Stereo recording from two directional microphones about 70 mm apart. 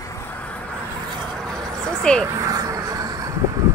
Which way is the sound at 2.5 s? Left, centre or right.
Right.